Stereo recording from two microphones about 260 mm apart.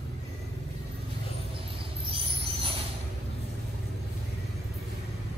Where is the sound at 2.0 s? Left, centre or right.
Centre.